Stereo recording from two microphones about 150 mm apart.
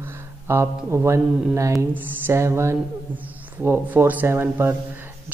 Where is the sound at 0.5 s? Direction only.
15° right (ahead or behind).